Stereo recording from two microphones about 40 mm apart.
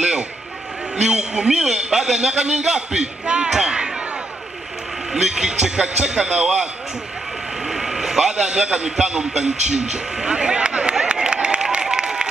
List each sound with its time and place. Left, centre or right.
1.0 s speech: centre
5.1 s speech: centre
7.6 s a man's voice: centre; by 11.0 s right
11.1 s a sound: right